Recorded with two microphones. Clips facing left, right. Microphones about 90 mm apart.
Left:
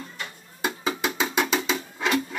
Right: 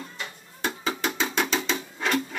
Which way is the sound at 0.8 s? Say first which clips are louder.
Left 1 dB; 10° left (ahead or behind).